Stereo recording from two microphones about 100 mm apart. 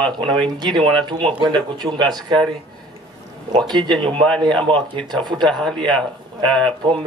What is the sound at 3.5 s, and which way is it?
A man's voice, 45° right (ahead or behind).